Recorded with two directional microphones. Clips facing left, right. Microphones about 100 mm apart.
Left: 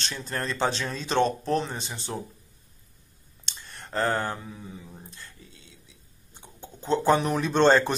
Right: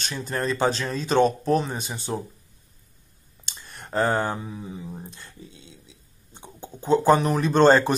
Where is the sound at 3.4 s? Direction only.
15° right (ahead or behind).